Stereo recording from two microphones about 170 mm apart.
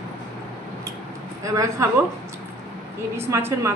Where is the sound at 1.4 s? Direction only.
20° right (ahead or behind).